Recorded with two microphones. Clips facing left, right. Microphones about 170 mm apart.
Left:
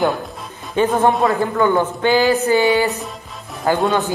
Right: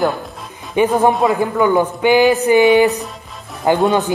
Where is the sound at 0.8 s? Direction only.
15° right (ahead or behind).